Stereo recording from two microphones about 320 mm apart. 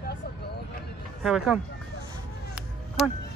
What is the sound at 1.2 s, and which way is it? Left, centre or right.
Speech, centre.